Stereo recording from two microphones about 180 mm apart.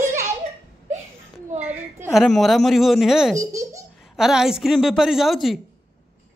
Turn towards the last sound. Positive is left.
turn(degrees=0)  # may be behind; listen again after turning